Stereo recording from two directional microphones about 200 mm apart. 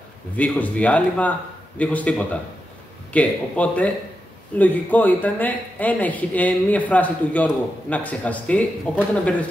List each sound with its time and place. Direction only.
0.4 s speech: 5° left (ahead or behind)